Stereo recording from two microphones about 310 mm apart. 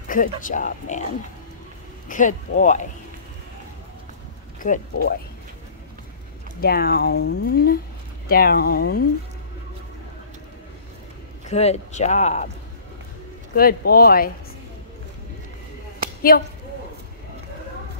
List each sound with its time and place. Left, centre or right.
0.1 s speech: left
2.0 s speech: left
4.6 s speech: left
6.6 s speech: left
11.4 s speech: left
13.6 s speech: left
16.2 s speech: left